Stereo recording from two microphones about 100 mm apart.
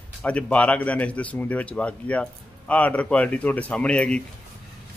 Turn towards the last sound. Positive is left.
turn(degrees=10)  # may be behind; listen again after turning